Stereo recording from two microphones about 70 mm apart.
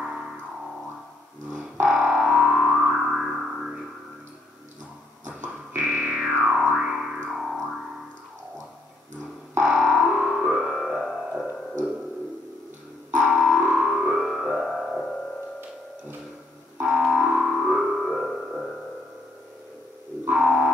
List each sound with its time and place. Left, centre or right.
1.9 s music: centre
5.8 s music: centre
6.4 s music: centre
9.7 s music: centre
13.2 s music: centre
13.9 s music: centre
16.8 s music: centre
20.3 s music: centre